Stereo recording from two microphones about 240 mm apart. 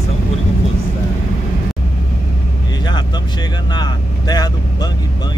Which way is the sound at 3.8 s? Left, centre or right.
Centre.